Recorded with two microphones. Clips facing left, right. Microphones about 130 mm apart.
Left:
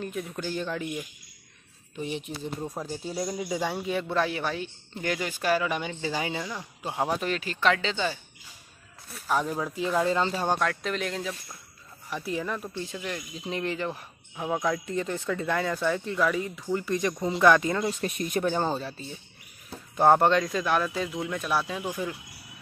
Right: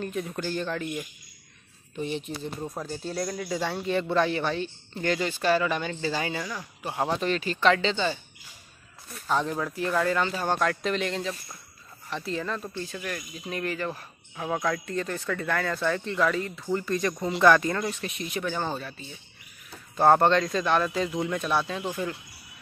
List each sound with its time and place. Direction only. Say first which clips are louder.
0.0 s speech: right 2 dB; 5° left (ahead or behind)
7.0 s speech: right 1 dB; 5° left (ahead or behind); by 10.5 s 25° left (ahead or behind)
10.6 s speech: right 2 dB; centre (ahead or behind); by 17.9 s 15° left (ahead or behind)
18.0 s speech: left 4 dB; 45° left (ahead or behind)
18.5 s speech: left 3 dB; 30° left (ahead or behind)
20.0 s speech: even; 10° left (ahead or behind)